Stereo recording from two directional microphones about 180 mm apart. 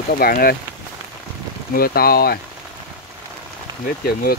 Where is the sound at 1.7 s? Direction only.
55° left (ahead or behind).